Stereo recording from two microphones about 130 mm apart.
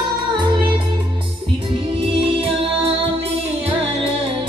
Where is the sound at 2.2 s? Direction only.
45° right (ahead or behind).